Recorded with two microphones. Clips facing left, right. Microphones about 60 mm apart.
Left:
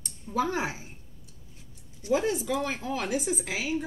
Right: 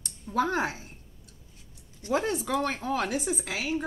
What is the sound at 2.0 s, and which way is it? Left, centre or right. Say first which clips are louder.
Speech: left 1 dB; right.